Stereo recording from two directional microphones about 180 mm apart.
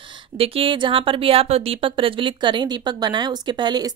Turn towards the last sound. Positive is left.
turn(degrees=-25)  # may be behind; listen again after turning